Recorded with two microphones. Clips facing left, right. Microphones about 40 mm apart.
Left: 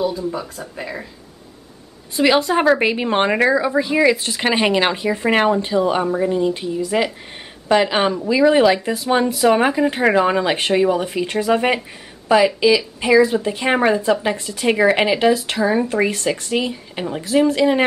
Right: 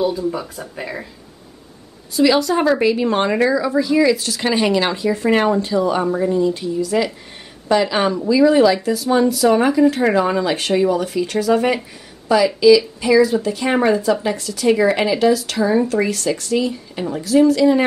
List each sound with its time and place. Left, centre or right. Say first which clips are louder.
0.7 s speech: right 1 dB; centre
2.1 s a woman's voice: right 1 dB; left